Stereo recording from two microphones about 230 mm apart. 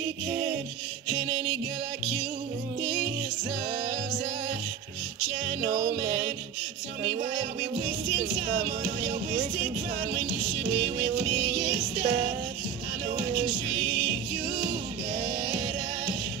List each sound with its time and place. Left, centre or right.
8.4 s music: right
10.7 s music: centre
11.7 s music: right
15.4 s music: right